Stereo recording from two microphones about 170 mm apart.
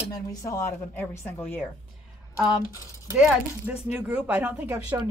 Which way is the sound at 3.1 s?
5° right (ahead or behind).